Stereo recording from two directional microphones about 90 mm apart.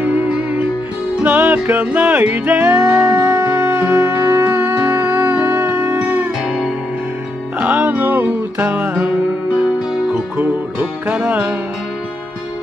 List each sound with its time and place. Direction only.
0.0 s music: 15° right (ahead or behind)
6.4 s music: 5° right (ahead or behind)